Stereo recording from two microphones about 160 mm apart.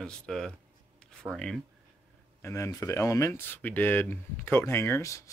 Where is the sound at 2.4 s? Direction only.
20° left (ahead or behind).